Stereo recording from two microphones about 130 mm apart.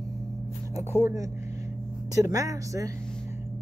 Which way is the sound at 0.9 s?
20° right (ahead or behind).